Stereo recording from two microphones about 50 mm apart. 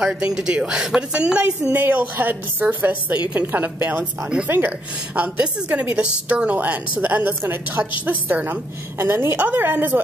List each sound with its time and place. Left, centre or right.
0.0 s a woman's voice: centre
1.7 s a woman's voice: right
7.0 s a woman's voice: right
7.8 s a woman's voice: right
9.0 s a woman's voice: right
9.6 s a woman's voice: right